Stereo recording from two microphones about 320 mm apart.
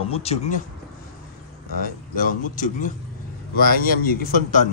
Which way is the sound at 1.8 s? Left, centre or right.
Left.